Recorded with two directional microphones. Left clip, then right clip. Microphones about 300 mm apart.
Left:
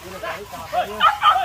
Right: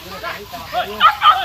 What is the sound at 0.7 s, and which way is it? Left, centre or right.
Speech, left.